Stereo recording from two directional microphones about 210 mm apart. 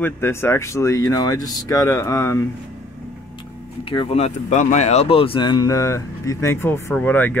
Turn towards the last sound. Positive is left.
turn(degrees=10)  # may be behind; listen again after turning